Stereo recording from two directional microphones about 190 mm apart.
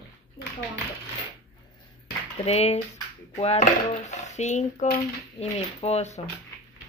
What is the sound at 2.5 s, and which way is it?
Speech, 35° left (ahead or behind).